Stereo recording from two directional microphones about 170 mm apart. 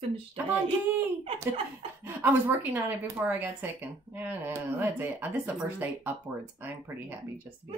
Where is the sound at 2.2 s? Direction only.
10° right (ahead or behind).